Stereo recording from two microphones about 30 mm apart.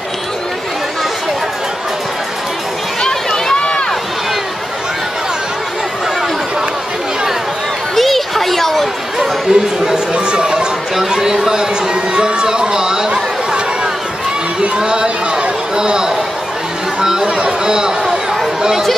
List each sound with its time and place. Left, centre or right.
3.5 s run: left
7.9 s a sound: centre
9.5 s chatter: right
10.1 s a sound: right
14.8 s chatter: right
17.4 s chatter: right